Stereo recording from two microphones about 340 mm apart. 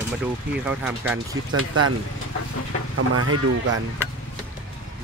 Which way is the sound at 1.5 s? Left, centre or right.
Right.